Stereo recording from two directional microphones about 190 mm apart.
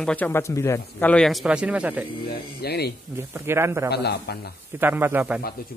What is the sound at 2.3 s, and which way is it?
Speech, 55° left (ahead or behind).